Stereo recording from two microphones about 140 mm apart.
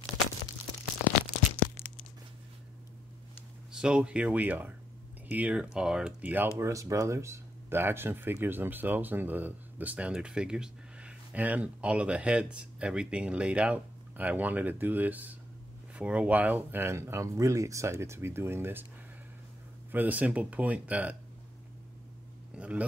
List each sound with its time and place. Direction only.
3.7 s speech: 5° right (ahead or behind)
19.9 s speech: 10° right (ahead or behind)
22.6 s speech: 10° right (ahead or behind)